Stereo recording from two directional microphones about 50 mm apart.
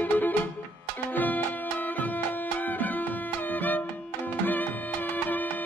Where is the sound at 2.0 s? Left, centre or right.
Left.